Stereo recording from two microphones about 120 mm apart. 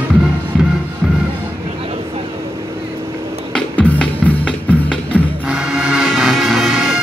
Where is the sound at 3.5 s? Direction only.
10° left (ahead or behind).